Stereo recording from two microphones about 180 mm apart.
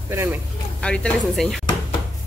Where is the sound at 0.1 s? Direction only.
15° right (ahead or behind).